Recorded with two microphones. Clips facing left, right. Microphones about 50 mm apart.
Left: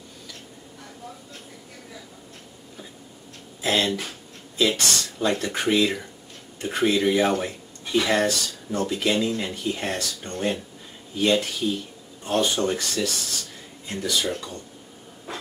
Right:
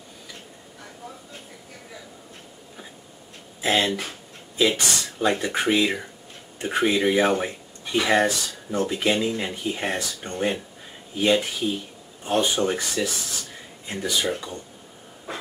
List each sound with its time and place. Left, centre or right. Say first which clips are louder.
3.6 s speech: right 1 dB; centre
15.3 s breathing: right 1 dB; centre